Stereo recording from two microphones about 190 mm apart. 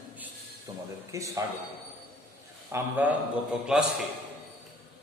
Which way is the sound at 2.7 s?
10° right (ahead or behind).